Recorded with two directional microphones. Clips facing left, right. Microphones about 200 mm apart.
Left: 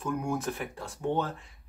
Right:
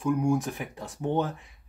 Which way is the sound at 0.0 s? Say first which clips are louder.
Right 6 dB; 15° right (ahead or behind).